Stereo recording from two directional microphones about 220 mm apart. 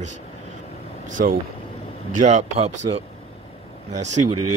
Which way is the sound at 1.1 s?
35° right (ahead or behind).